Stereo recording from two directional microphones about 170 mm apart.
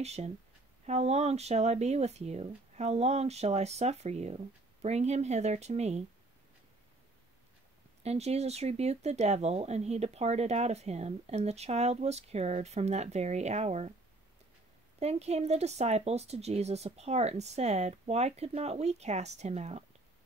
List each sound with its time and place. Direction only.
0.0 s speech: 40° right (ahead or behind)
8.0 s speech: 40° right (ahead or behind)
15.0 s speech: 40° right (ahead or behind)